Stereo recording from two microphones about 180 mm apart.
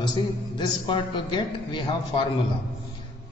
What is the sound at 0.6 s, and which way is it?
A man's voice, 25° left (ahead or behind).